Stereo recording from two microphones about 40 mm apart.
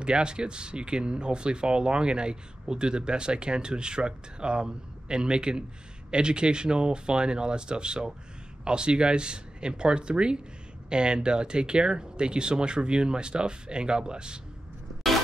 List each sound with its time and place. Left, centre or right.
0.0 s speech: right